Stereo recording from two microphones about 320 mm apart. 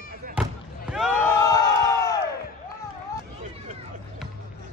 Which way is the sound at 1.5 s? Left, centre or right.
Centre.